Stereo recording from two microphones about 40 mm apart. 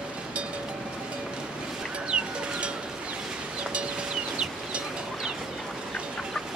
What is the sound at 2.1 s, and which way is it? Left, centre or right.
Bird, right.